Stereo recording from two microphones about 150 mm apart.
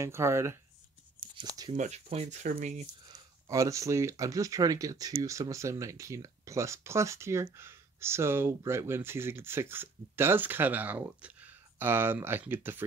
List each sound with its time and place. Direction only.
0.0 s speech: 20° right (ahead or behind)
1.7 s speech: 45° right (ahead or behind)
3.4 s speech: 20° right (ahead or behind)